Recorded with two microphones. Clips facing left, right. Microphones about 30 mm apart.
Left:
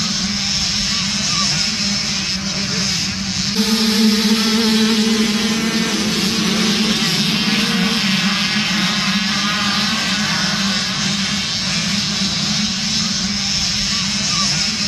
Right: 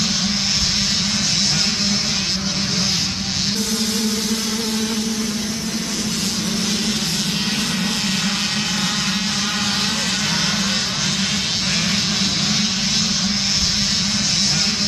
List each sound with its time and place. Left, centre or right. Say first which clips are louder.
3.7 s music: left 6 dB; left
6.7 s vehicle: left 5 dB; left